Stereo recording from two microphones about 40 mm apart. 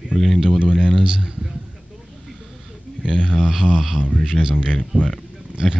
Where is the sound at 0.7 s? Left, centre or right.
Centre.